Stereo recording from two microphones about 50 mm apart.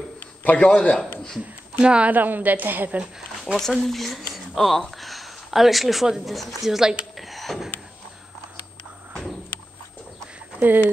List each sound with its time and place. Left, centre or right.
0.4 s a man's voice: left
1.8 s speech: right
2.1 s a woman's voice: right
3.5 s speech: centre
10.6 s speech: right